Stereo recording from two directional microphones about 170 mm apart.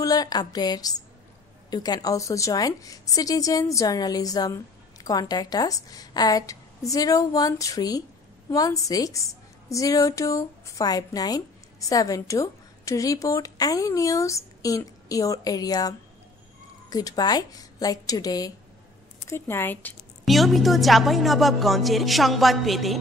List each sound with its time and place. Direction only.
0.0 s a woman's voice: 20° left (ahead or behind)
16.9 s a woman's voice: 25° left (ahead or behind)
20.2 s a woman's voice: centre (ahead or behind)